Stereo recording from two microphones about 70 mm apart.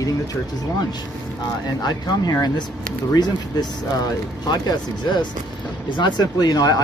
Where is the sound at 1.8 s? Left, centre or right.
Left.